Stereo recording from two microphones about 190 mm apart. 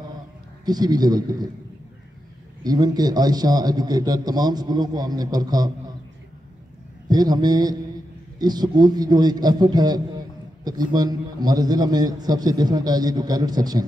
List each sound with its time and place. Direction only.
0.7 s a man's voice: 20° right (ahead or behind)
2.6 s a man's voice: 20° right (ahead or behind)
7.1 s a man's voice: 20° right (ahead or behind)